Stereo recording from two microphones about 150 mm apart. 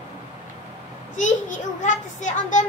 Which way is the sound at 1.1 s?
55° left (ahead or behind).